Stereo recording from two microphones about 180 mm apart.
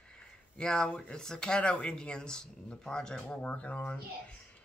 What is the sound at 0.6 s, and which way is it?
Speech, 5° left (ahead or behind).